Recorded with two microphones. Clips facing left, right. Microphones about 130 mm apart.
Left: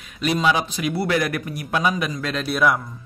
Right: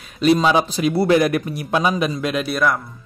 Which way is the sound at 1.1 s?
25° right (ahead or behind).